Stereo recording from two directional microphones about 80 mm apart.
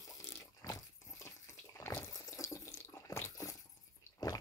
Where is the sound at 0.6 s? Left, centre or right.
Left.